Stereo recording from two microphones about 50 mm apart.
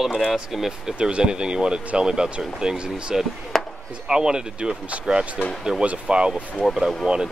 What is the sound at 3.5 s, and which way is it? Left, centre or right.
Chop, centre.